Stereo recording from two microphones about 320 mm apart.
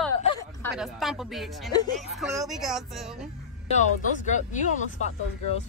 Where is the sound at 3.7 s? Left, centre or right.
Left.